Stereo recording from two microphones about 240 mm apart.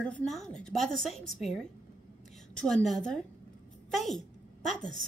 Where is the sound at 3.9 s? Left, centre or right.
Centre.